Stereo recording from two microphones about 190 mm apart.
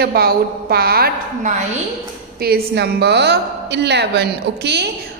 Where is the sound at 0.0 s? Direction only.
55° right (ahead or behind).